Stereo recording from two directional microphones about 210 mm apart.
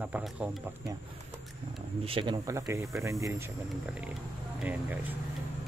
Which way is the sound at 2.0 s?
25° right (ahead or behind).